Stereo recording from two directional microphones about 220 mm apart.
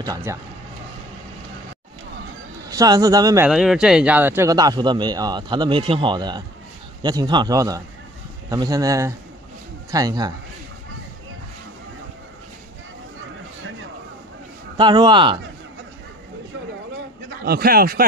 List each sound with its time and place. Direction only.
0.0 s a man's voice: 15° right (ahead or behind)
2.7 s a man's voice: 15° right (ahead or behind)
3.4 s a man's voice: 5° right (ahead or behind)
14.8 s speech: 20° right (ahead or behind)
17.5 s a man's voice: 45° right (ahead or behind)